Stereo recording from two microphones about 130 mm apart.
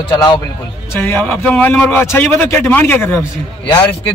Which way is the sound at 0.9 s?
20° left (ahead or behind).